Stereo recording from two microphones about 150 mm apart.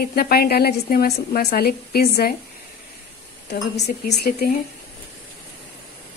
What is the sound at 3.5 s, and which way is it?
A woman's voice, 90° left.